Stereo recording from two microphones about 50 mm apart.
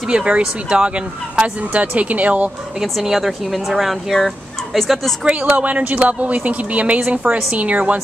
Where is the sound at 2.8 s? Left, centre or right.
Centre.